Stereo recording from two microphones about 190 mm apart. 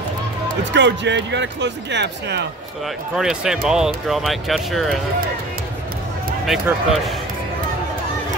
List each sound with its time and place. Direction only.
0.7 s speech: 70° right (ahead or behind)
3.2 s speech: 5° right (ahead or behind)
6.4 s speech: centre (ahead or behind)